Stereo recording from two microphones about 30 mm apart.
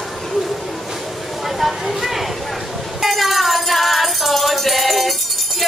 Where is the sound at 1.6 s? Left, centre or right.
Centre.